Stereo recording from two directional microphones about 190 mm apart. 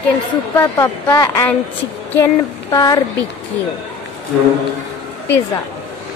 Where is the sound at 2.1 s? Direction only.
15° left (ahead or behind).